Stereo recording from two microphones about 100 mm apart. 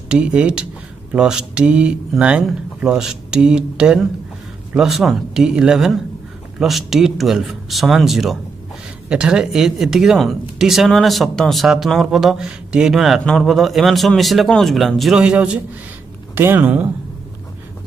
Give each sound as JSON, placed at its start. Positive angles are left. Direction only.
{"t": 0.1, "sound": "speech", "side_deg": -10}
{"t": 16.3, "sound": "speech", "side_deg": -20}